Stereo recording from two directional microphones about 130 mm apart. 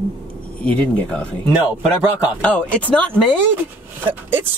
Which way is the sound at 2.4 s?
10° left (ahead or behind).